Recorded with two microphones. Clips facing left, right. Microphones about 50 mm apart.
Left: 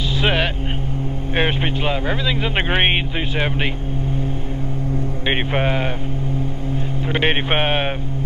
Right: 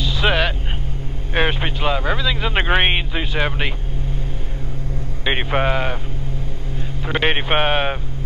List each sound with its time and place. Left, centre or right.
0.2 s vehicle: centre
1.3 s speech: centre
5.2 s speech: centre
7.1 s speech: centre